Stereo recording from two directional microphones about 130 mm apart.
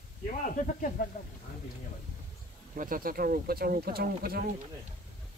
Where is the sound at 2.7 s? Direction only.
90° right.